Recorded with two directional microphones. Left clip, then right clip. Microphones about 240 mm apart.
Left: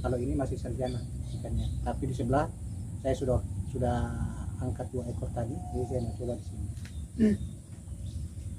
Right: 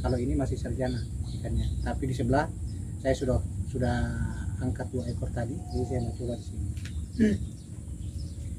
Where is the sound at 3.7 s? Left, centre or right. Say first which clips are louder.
Even; centre.